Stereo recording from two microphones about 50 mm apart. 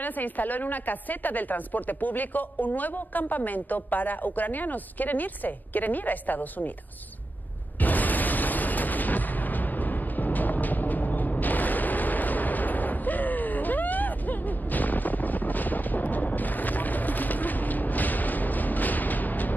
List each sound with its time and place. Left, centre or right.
0.0 s a woman's voice: left
7.8 s explosion: left